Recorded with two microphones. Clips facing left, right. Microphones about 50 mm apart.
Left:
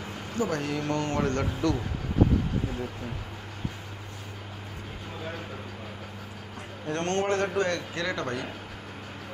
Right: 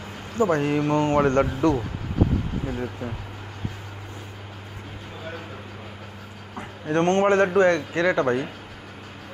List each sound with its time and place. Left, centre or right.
0.4 s a man's voice: right
6.9 s a man's voice: right